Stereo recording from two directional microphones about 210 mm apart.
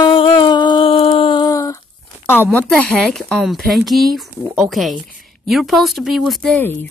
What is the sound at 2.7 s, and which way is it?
Speech, 5° left (ahead or behind).